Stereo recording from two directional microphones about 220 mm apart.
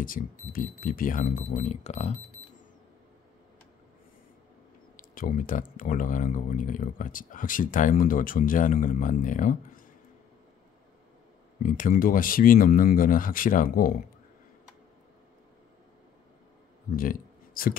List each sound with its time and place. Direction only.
0.0 s speech: 40° left (ahead or behind)
4.9 s speech: 40° left (ahead or behind)
11.6 s speech: 40° left (ahead or behind)
16.9 s speech: 40° left (ahead or behind)